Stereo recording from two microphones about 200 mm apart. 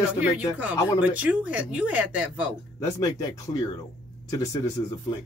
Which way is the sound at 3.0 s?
15° left (ahead or behind).